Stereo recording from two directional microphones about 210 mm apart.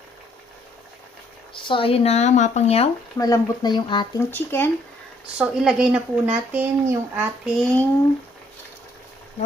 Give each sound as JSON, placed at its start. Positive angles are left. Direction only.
{"t": 1.5, "sound": "speech", "side_deg": 25}
{"t": 3.2, "sound": "speech", "side_deg": 20}
{"t": 4.3, "sound": "speech", "side_deg": 10}
{"t": 5.4, "sound": "speech", "side_deg": -5}